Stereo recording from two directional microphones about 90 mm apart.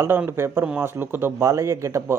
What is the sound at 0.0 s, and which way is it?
Speech, 25° right (ahead or behind).